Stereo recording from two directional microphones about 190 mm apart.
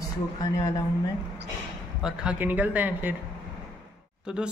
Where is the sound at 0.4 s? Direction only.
20° left (ahead or behind).